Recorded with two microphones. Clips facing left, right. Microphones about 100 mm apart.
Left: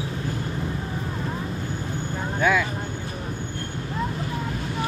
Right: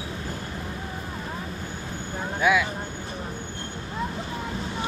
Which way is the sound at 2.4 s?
5° right (ahead or behind).